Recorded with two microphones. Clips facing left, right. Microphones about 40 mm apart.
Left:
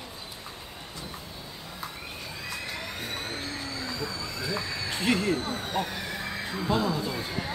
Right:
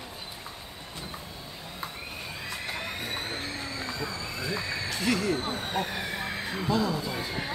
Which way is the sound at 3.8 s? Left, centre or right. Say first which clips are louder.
Even; right.